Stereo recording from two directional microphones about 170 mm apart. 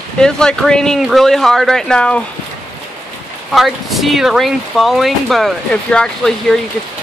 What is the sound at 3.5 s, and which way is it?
Speech, centre (ahead or behind).